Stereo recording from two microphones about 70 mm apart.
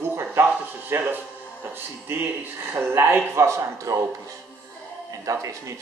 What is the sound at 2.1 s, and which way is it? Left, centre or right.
A man's voice, right.